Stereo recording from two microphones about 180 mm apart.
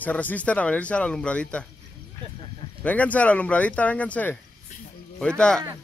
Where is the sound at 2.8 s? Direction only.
10° left (ahead or behind).